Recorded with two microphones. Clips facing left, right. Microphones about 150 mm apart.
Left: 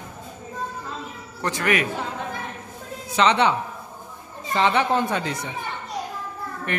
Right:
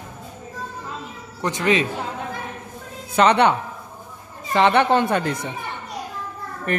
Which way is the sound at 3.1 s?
55° right (ahead or behind).